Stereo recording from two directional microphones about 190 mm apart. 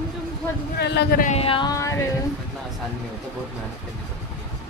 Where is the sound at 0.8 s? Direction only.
60° left (ahead or behind).